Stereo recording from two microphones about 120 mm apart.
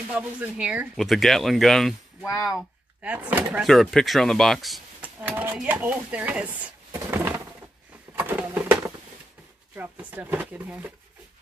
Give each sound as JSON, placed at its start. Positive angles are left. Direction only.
{"t": 0.1, "sound": "speech", "side_deg": -10}
{"t": 0.9, "sound": "speech", "side_deg": 0}
{"t": 2.2, "sound": "speech", "side_deg": 30}
{"t": 3.0, "sound": "speech", "side_deg": -10}
{"t": 3.6, "sound": "speech", "side_deg": 0}
{"t": 5.0, "sound": "a sound", "side_deg": -15}
{"t": 5.6, "sound": "speech", "side_deg": -15}
{"t": 8.2, "sound": "a sound", "side_deg": -15}
{"t": 9.8, "sound": "speech", "side_deg": -15}